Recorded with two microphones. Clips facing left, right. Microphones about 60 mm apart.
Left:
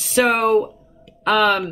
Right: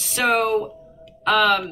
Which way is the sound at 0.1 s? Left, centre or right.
Centre.